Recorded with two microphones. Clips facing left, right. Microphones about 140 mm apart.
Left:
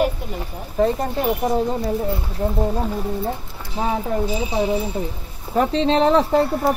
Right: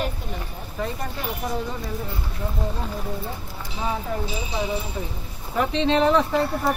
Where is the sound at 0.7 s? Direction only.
35° left (ahead or behind).